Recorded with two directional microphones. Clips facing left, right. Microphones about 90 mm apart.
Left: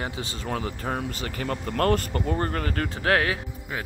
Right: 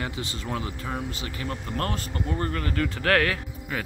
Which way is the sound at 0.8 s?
50° left (ahead or behind).